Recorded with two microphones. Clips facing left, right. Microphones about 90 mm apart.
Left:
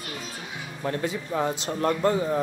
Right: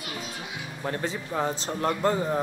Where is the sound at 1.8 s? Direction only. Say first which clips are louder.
Left 2 dB; 35° left (ahead or behind).